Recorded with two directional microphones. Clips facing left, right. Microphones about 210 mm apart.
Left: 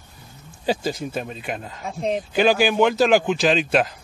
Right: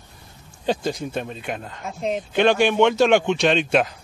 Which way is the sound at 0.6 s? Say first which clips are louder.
Even; 5° left (ahead or behind).